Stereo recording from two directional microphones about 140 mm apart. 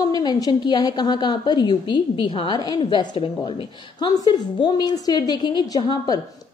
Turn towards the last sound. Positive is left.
turn(degrees=30)  # may be behind; listen again after turning